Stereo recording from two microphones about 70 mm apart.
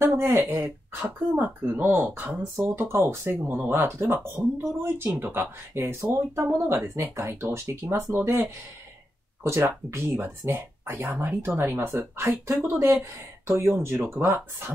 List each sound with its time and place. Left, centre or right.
0.0 s speech: right
1.3 s speech: right
2.5 s speech: right
12.5 s speech: right